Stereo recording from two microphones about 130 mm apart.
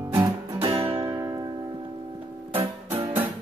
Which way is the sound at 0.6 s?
45° right (ahead or behind).